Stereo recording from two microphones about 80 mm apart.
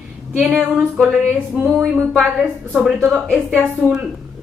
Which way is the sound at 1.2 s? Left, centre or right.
Right.